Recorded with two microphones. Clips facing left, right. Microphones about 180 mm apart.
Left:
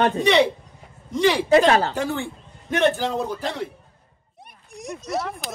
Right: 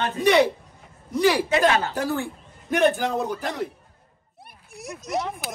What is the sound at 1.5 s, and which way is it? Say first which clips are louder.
Speech: left 4 dB; 35° left (ahead or behind).